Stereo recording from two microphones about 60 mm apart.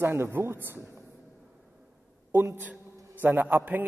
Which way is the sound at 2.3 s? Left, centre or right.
Right.